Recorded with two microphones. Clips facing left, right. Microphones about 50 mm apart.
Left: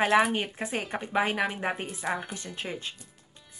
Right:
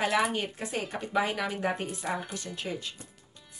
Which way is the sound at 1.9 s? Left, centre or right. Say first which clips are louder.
Left 2 dB; centre.